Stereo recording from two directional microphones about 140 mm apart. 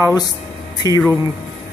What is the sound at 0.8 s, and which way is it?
Speech, 25° left (ahead or behind).